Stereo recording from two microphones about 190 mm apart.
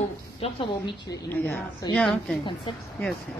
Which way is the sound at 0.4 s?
25° left (ahead or behind).